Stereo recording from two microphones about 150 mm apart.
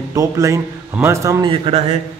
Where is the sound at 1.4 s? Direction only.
35° right (ahead or behind).